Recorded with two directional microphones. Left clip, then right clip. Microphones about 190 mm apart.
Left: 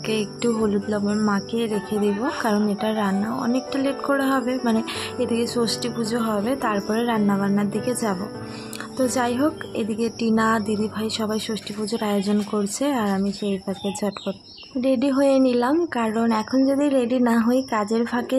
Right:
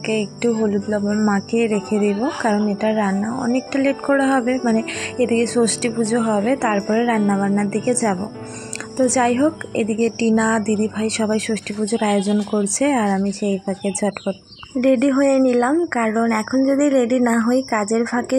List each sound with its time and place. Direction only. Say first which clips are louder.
0.4 s a woman's voice: right 2 dB; 5° right (ahead or behind)